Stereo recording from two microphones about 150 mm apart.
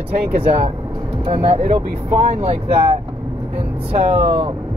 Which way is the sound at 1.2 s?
45° right (ahead or behind).